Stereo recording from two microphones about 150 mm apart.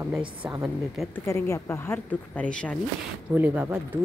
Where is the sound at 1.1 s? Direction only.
20° left (ahead or behind).